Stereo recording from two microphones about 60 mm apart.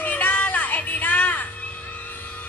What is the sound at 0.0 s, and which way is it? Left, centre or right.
Music, left.